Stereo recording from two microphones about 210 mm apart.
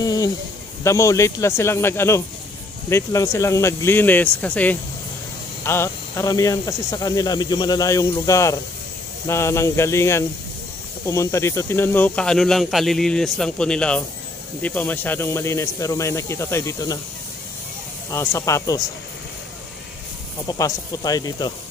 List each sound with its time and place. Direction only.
0.0 s a sound: 15° left (ahead or behind)
0.8 s speech: 15° left (ahead or behind)
18.1 s speech: 15° left (ahead or behind)
20.4 s speech: 15° left (ahead or behind)